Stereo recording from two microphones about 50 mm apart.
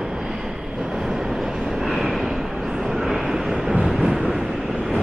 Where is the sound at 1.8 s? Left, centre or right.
Centre.